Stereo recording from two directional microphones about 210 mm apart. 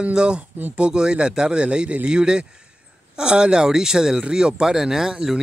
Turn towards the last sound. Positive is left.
turn(degrees=-5)  # may be behind; listen again after turning